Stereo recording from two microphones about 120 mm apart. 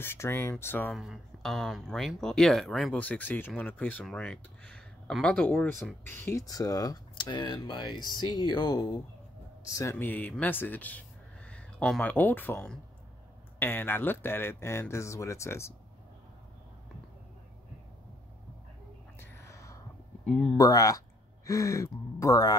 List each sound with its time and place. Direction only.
0.0 s speech: 20° left (ahead or behind)
0.9 s speech: 5° right (ahead or behind)
6.0 s speech: 20° left (ahead or behind)
6.4 s speech: 30° left (ahead or behind)
9.9 s speech: 15° left (ahead or behind)
19.1 s whispering: 25° left (ahead or behind)
20.2 s speech: centre (ahead or behind)
20.5 s speech: 30° left (ahead or behind)